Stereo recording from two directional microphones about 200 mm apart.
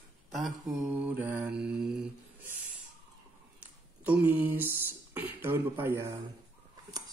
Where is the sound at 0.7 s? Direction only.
10° right (ahead or behind).